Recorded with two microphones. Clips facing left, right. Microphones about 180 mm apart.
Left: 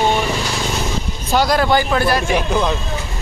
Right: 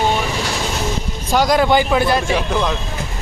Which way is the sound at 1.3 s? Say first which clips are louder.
Right 1 dB; 15° right (ahead or behind).